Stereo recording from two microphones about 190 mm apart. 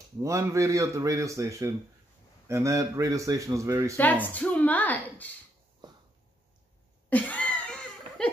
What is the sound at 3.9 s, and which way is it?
A woman's voice, 10° left (ahead or behind).